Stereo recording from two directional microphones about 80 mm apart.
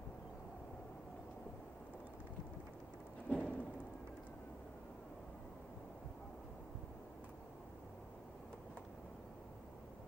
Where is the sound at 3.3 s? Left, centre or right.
Centre.